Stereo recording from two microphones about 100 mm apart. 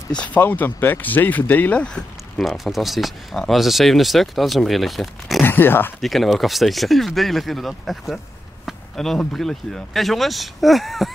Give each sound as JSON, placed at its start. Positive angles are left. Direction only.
{"t": 0.1, "sound": "speech", "side_deg": 15}
{"t": 5.4, "sound": "speech", "side_deg": 20}
{"t": 5.9, "sound": "speech", "side_deg": 0}